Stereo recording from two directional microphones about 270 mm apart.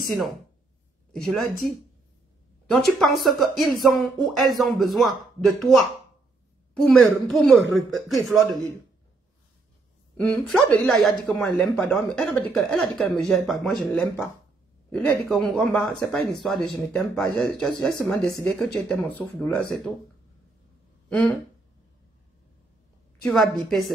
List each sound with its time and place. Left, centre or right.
0.0 s speech: centre
10.4 s speech: centre
23.2 s speech: centre